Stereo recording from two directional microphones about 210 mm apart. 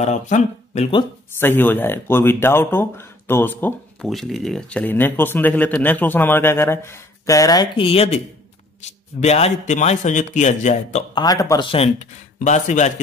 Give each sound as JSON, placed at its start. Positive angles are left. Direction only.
{"t": 0.0, "sound": "a man's voice", "side_deg": 35}
{"t": 1.4, "sound": "a man's voice", "side_deg": 10}
{"t": 11.1, "sound": "speech", "side_deg": 15}
{"t": 11.7, "sound": "a man's voice", "side_deg": 30}